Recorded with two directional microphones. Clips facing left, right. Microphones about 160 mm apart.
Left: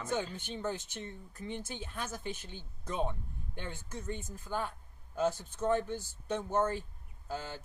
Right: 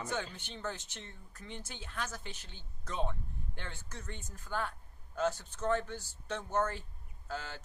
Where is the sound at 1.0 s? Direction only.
15° left (ahead or behind).